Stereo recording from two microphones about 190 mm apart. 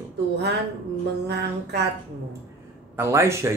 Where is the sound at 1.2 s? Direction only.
60° right (ahead or behind).